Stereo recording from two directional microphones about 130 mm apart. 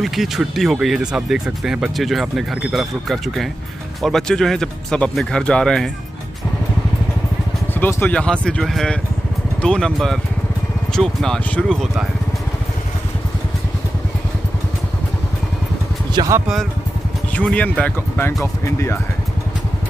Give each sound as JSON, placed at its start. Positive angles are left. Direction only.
{"t": 0.0, "sound": "speech", "side_deg": 0}
{"t": 7.8, "sound": "speech", "side_deg": 10}
{"t": 16.1, "sound": "speech", "side_deg": -30}
{"t": 17.3, "sound": "speech", "side_deg": 10}